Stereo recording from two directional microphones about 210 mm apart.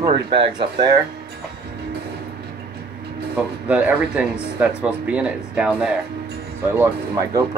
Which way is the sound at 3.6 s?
5° right (ahead or behind).